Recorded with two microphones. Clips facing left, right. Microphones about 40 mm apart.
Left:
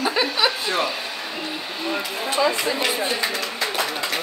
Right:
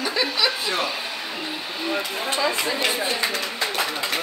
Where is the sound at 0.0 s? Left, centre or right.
Centre.